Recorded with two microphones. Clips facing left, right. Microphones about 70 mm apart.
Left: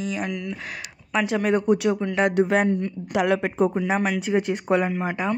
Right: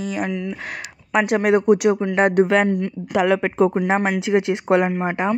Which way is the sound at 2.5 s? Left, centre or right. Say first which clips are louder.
Right 3 dB; right.